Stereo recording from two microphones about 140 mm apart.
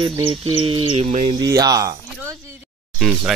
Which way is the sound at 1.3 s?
25° right (ahead or behind).